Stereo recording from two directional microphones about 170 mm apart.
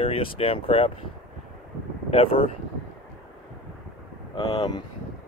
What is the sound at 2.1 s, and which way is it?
Speech, 35° left (ahead or behind).